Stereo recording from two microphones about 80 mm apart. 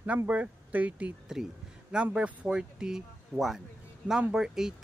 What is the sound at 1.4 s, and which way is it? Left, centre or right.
Speech, centre.